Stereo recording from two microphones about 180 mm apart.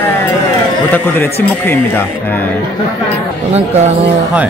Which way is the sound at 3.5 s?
35° right (ahead or behind).